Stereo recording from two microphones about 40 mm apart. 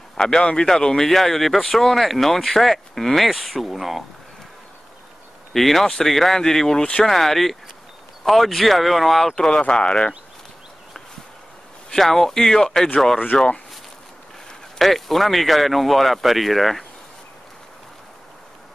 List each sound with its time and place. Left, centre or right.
0.2 s speech: centre
5.5 s speech: centre
9.3 s speech: left
11.9 s speech: centre
14.8 s speech: centre